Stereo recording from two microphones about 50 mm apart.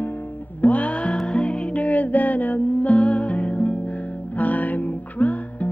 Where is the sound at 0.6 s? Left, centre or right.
Left.